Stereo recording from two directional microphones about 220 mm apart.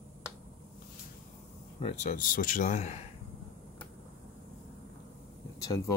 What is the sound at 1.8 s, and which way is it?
Speech, 30° left (ahead or behind).